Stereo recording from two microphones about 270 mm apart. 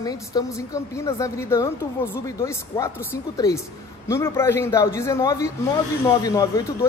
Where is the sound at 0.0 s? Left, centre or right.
Centre.